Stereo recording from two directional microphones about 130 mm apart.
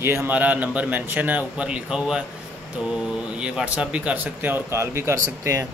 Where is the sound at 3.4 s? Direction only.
10° right (ahead or behind).